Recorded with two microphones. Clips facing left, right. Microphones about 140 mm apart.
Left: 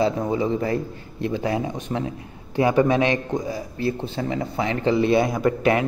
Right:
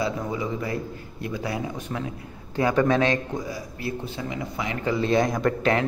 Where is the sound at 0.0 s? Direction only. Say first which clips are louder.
Left 6 dB; 30° left (ahead or behind).